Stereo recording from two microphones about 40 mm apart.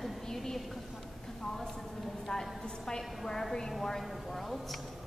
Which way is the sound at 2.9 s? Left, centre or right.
Centre.